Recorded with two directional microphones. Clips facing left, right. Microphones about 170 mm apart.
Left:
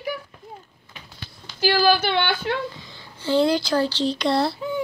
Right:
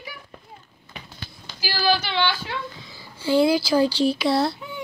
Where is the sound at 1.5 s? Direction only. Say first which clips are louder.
Left 5 dB; 50° left (ahead or behind).